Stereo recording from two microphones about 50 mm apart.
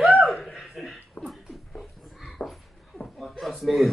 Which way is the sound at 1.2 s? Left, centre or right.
Left.